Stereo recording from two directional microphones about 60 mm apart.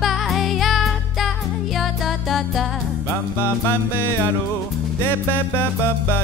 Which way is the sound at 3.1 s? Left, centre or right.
Left.